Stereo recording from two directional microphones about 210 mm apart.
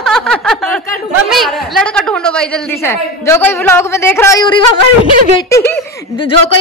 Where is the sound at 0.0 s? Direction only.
Centre (ahead or behind).